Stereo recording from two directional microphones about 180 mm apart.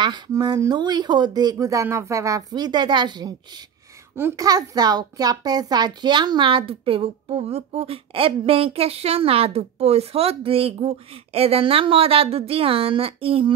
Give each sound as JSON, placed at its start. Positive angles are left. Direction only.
{"t": 0.0, "sound": "a child's voice", "side_deg": -25}